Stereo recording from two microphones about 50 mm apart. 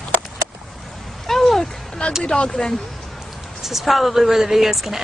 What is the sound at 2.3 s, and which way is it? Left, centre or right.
Speech, centre.